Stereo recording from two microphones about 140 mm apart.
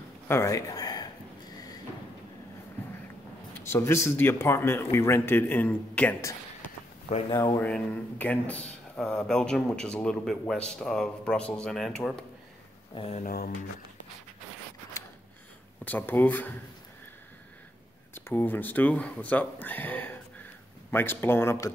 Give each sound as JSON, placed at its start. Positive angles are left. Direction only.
{"t": 0.3, "sound": "a man's voice", "side_deg": 20}
{"t": 3.5, "sound": "speech", "side_deg": 15}
{"t": 7.1, "sound": "speech", "side_deg": 45}
{"t": 7.5, "sound": "speech", "side_deg": 10}
{"t": 13.1, "sound": "speech", "side_deg": 80}
{"t": 15.8, "sound": "speech", "side_deg": 10}
{"t": 18.1, "sound": "speech", "side_deg": 15}